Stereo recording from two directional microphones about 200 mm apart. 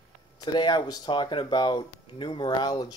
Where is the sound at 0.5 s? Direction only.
20° left (ahead or behind).